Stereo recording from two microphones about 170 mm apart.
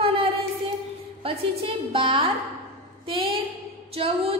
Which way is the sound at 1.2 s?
30° right (ahead or behind).